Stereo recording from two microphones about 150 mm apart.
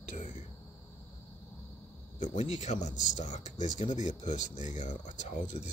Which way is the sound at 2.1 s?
55° left (ahead or behind).